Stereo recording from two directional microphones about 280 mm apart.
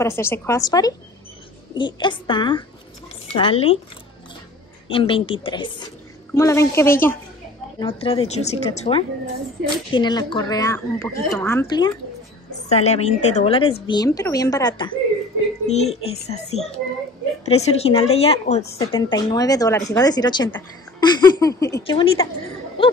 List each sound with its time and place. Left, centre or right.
0.0 s speech: centre
4.8 s speech: centre
7.8 s speech: centre